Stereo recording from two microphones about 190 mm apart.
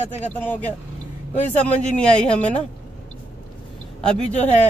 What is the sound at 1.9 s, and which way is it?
Speech, 5° left (ahead or behind).